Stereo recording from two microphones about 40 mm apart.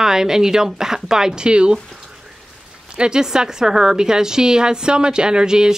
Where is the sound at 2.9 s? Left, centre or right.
Centre.